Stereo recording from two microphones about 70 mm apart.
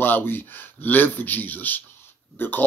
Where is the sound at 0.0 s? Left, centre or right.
Left.